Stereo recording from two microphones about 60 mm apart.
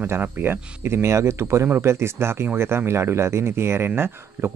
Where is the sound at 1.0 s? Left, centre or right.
Right.